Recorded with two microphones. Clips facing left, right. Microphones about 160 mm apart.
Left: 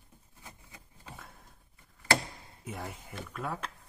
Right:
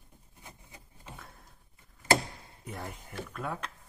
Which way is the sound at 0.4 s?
25° right (ahead or behind).